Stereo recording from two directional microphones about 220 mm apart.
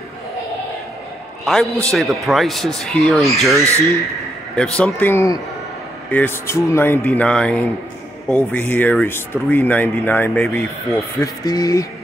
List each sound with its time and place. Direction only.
1.4 s a man's voice: centre (ahead or behind)
3.5 s speech: 15° right (ahead or behind)
4.6 s speech: 5° left (ahead or behind)
11.1 s speech: 15° left (ahead or behind)